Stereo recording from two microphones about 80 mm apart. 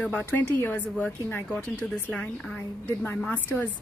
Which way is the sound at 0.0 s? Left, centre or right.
Centre.